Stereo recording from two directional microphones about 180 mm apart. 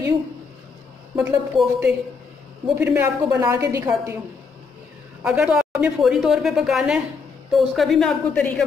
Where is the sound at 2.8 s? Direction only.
10° right (ahead or behind).